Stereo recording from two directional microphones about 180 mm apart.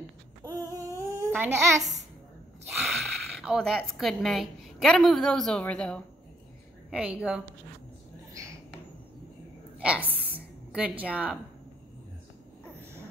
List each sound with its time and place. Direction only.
0.7 s humming: 15° right (ahead or behind)
2.7 s speech: centre (ahead or behind)
6.9 s a woman's voice: 5° right (ahead or behind)
10.0 s a sound: 10° right (ahead or behind)